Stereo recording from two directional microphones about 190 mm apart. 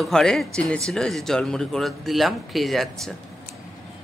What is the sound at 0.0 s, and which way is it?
Speech, 5° left (ahead or behind).